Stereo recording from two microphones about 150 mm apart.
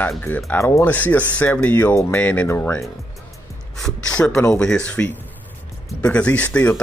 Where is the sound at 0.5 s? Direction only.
15° left (ahead or behind).